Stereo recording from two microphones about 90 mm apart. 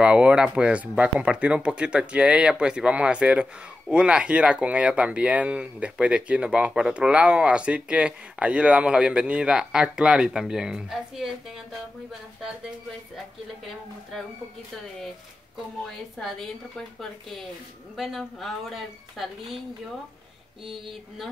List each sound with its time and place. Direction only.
0.0 s speech: 10° right (ahead or behind)
15.8 s a woman's voice: 5° left (ahead or behind)